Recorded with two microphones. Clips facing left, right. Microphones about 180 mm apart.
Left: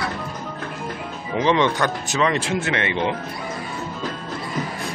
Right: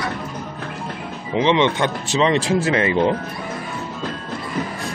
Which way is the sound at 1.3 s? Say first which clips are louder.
Right 2 dB; 20° right (ahead or behind).